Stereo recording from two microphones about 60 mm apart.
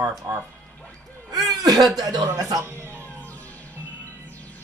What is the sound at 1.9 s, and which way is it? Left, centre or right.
Speech, right.